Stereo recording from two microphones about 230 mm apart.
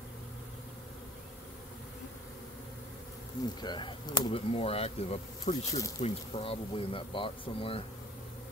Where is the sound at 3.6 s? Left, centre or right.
Centre.